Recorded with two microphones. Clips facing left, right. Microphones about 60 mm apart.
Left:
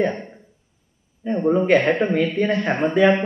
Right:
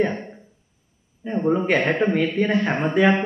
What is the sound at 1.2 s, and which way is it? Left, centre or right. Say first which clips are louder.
Speech: left 2 dB; centre.